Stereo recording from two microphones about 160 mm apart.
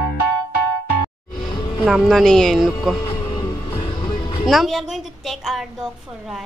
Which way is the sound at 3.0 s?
25° left (ahead or behind).